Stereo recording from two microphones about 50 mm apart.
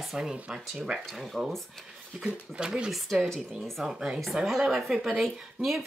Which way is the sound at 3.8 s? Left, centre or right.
Centre.